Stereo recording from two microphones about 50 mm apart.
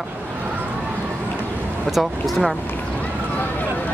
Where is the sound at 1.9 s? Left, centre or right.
Centre.